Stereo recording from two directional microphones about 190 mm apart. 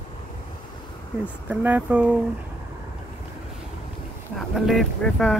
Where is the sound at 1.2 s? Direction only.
10° right (ahead or behind).